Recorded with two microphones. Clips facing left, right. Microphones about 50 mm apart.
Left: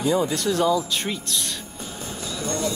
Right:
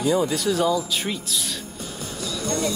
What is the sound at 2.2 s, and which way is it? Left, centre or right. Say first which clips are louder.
Music: right 2 dB; left.